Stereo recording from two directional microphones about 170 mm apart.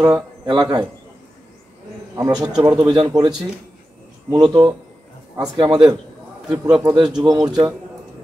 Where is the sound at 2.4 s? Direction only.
25° right (ahead or behind).